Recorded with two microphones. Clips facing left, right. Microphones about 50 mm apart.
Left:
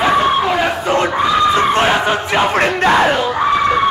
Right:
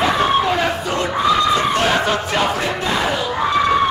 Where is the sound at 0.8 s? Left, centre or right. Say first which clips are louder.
Left 5 dB; left.